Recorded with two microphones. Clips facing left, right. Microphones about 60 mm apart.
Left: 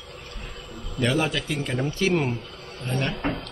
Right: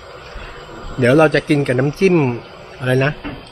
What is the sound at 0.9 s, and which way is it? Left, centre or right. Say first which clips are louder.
Speech: right 13 dB; right.